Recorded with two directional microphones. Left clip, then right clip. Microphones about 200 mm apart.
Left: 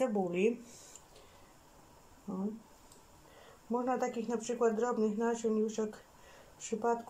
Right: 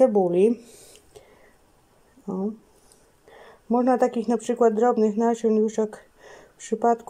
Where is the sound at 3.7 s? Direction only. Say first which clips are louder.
Right 13 dB; 50° right (ahead or behind).